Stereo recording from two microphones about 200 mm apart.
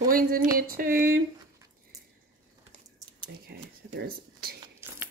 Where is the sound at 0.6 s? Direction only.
45° right (ahead or behind).